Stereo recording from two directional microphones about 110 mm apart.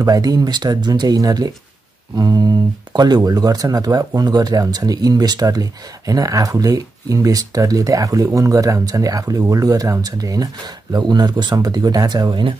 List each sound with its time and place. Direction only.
0.0 s speech: 35° right (ahead or behind)